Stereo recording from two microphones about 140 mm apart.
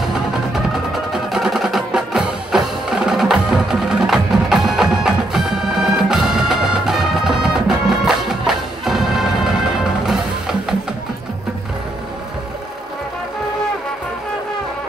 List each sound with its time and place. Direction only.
0.9 s music: centre (ahead or behind)